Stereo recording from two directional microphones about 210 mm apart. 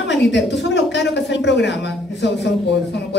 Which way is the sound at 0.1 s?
55° left (ahead or behind).